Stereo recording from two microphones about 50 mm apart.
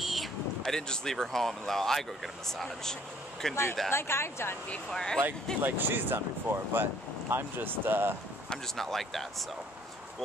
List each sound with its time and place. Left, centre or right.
0.0 s thunder: centre
0.6 s speech: centre
3.9 s speech: left
4.9 s speech: centre
5.6 s speech: right
8.7 s speech: centre